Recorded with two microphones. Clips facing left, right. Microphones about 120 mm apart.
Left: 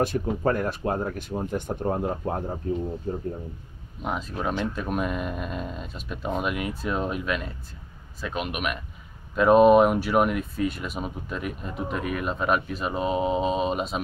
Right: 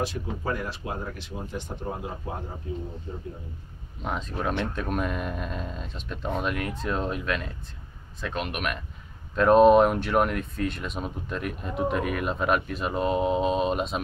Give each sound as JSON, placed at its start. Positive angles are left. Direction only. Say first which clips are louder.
{"t": 0.0, "sound": "speech", "louder": "left 6 dB", "side_deg": 50}
{"t": 4.0, "sound": "speech", "louder": "left 1 dB", "side_deg": 5}